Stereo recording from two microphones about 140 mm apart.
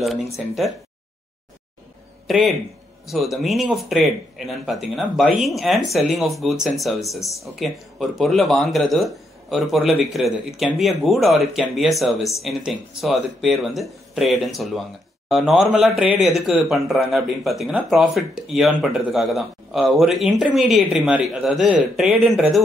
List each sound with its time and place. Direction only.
0.0 s speech: centre (ahead or behind)
2.2 s speech: centre (ahead or behind)